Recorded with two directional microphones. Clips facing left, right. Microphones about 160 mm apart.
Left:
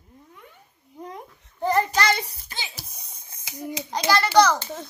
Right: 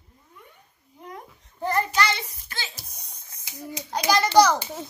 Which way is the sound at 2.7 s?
Centre (ahead or behind).